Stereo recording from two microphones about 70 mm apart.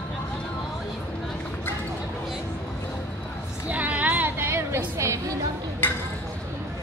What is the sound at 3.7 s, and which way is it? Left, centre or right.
Music, right.